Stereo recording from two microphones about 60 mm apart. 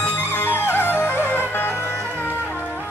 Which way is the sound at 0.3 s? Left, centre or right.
Left.